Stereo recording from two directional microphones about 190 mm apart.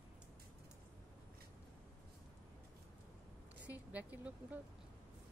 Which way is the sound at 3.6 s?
10° right (ahead or behind).